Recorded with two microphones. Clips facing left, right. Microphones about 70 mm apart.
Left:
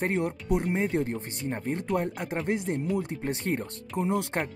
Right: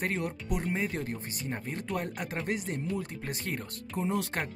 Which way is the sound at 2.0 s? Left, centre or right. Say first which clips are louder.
Left 4 dB; left.